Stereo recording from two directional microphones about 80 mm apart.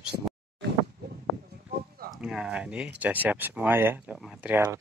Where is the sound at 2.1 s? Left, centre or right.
Centre; by 4.0 s right.